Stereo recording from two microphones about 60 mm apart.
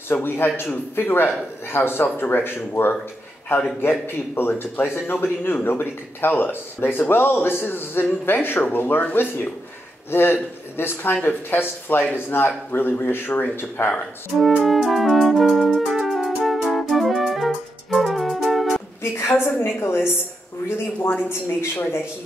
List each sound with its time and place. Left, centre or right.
0.1 s speech: left
14.6 s music: centre
19.1 s a woman's voice: left
21.7 s speech: left